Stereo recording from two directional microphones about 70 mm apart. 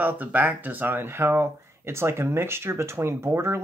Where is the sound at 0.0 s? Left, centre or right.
Right.